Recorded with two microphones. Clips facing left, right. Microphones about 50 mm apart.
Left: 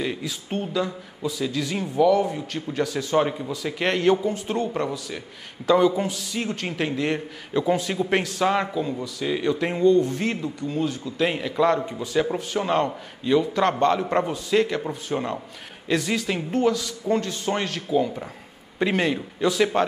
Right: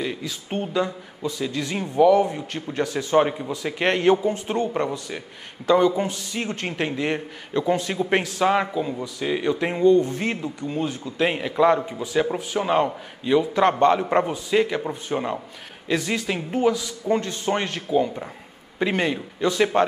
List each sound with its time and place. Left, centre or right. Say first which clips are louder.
0.0 s a man's voice: even; centre